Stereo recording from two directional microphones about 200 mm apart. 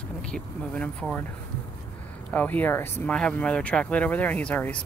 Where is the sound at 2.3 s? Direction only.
10° left (ahead or behind).